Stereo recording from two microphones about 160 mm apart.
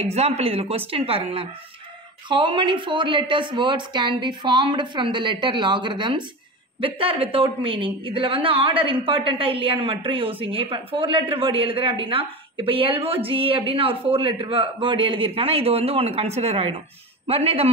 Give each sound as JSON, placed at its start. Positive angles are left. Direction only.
{"t": 0.0, "sound": "a woman's voice", "side_deg": -40}